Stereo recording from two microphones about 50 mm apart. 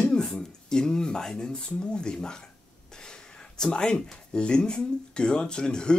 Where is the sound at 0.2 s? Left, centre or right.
Centre.